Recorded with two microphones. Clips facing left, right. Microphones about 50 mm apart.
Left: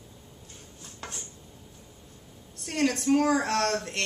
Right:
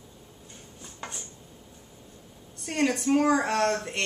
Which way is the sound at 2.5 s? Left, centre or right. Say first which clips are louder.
Right 1 dB; centre.